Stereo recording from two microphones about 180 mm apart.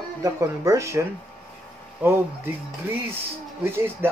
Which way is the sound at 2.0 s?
10° right (ahead or behind).